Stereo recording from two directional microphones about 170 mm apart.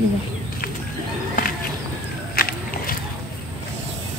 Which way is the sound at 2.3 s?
60° left (ahead or behind).